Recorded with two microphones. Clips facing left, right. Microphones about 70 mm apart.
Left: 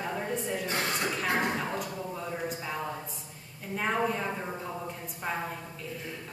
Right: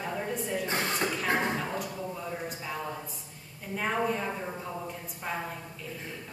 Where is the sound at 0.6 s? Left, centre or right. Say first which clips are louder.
Even; right.